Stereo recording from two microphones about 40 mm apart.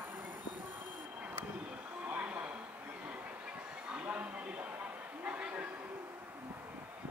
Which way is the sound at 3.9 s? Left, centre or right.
Right.